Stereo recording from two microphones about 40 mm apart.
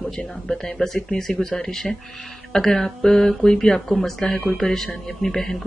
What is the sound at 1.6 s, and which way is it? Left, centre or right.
Speech, centre.